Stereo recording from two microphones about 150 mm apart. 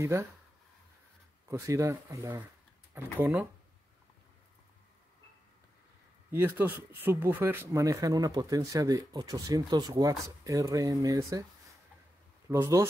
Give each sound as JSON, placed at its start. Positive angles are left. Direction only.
{"t": 0.0, "sound": "speech", "side_deg": -20}
{"t": 1.5, "sound": "speech", "side_deg": -20}
{"t": 6.3, "sound": "speech", "side_deg": -15}
{"t": 12.4, "sound": "speech", "side_deg": -20}